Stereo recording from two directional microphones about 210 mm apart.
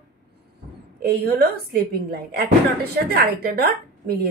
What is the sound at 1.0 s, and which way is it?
A woman's voice, 50° right (ahead or behind).